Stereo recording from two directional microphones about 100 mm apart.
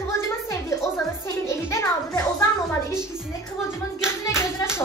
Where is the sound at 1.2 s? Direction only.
30° left (ahead or behind).